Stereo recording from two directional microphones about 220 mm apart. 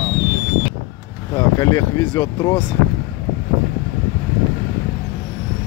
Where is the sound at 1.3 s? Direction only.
15° left (ahead or behind).